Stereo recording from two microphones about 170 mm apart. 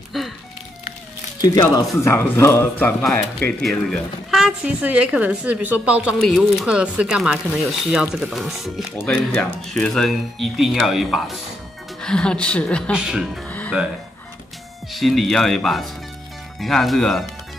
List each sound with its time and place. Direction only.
0.1 s music: centre (ahead or behind)
1.4 s a man's voice: 20° left (ahead or behind)
3.0 s a woman's voice: centre (ahead or behind)
12.9 s a woman's voice: 5° right (ahead or behind)
13.5 s music: 10° left (ahead or behind)
14.9 s a woman's voice: centre (ahead or behind)